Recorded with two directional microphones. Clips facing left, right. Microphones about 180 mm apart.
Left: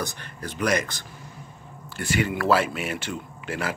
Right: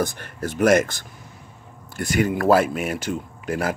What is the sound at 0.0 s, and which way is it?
Speech, 50° right (ahead or behind).